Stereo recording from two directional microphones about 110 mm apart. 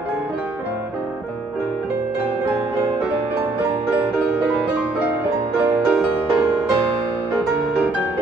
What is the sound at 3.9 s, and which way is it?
Music, 10° right (ahead or behind).